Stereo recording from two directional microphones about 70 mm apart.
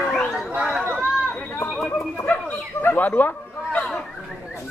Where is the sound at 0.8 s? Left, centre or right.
Right.